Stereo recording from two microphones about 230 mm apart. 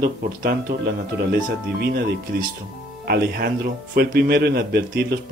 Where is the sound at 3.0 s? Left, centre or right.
Right.